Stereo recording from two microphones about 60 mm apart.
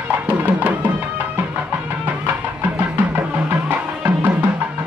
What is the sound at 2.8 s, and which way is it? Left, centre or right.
Music, right.